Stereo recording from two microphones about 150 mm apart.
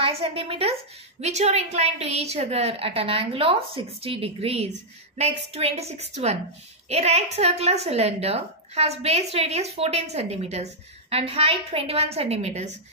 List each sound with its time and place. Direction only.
0.0 s a woman's voice: 40° right (ahead or behind)